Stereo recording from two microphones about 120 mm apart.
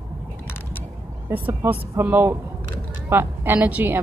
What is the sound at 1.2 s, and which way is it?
A woman's voice, 20° right (ahead or behind).